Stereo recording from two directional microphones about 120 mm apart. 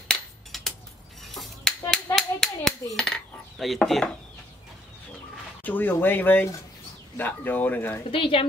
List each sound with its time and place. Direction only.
0.1 s a sound: centre (ahead or behind)
2.1 s dishes: 5° left (ahead or behind)
5.6 s speech: 15° left (ahead or behind)
8.1 s speech: 50° left (ahead or behind)